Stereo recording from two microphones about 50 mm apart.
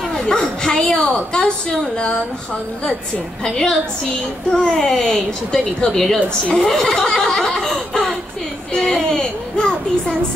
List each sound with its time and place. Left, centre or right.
0.1 s a woman's voice: centre
3.4 s a woman's voice: centre
8.7 s child singing: centre